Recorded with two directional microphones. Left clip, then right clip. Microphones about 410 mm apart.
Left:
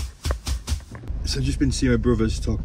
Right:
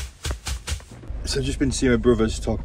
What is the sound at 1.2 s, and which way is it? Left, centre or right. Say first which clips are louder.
Speech: right 1 dB; centre.